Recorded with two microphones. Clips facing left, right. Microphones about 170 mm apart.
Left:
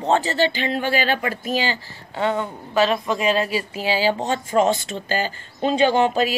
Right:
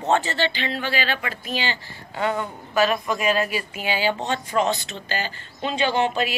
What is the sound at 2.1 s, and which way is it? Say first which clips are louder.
Speech: left 2 dB; 30° left (ahead or behind).